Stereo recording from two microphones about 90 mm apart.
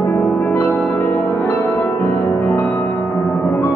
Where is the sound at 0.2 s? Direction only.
15° left (ahead or behind).